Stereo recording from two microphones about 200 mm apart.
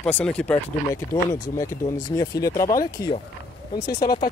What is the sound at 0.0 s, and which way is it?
Speech, 5° left (ahead or behind).